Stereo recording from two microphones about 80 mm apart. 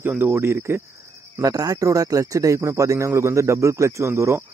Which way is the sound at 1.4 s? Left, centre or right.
Right.